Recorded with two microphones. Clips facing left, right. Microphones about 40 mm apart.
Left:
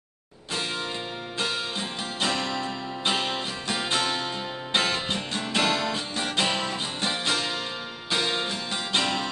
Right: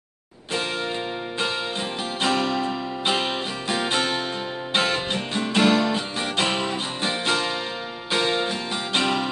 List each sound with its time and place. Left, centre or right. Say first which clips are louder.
2.2 s music: right 5 dB; centre